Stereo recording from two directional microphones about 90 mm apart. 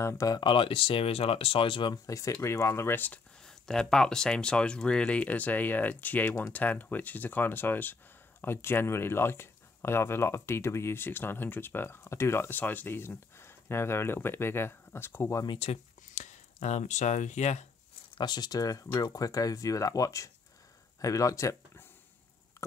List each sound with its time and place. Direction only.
0.0 s speech: 35° left (ahead or behind)
0.4 s speech: 65° left (ahead or behind)
2.0 s speech: 35° left (ahead or behind)
3.4 s speech: 5° left (ahead or behind); by 15.4 s 30° left (ahead or behind)
15.4 s speech: 65° left (ahead or behind)
18.1 s speech: 55° left (ahead or behind); by 21.8 s 35° left (ahead or behind)
22.6 s a sound: 35° left (ahead or behind)